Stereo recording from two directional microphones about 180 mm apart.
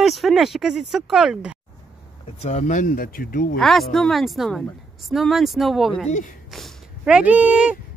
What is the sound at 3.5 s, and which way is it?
A woman's voice, centre (ahead or behind).